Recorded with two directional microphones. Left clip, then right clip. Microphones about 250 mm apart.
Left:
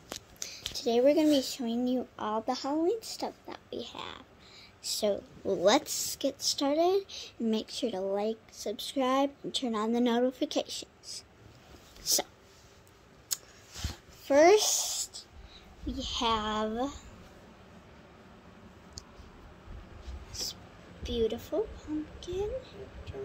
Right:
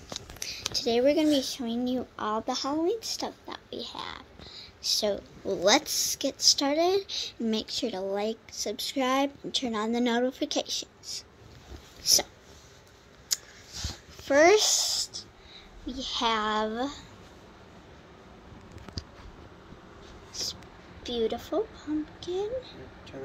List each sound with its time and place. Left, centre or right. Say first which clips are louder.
0.4 s a sound: right 6 dB; centre
1.4 s speech: right 1 dB; centre
12.0 s speech: right 6 dB; centre
13.8 s a sound: right 1 dB; centre
15.9 s speech: right 2 dB; centre
20.3 s vehicle: right 3 dB; centre
21.0 s a woman's voice: right 2 dB; centre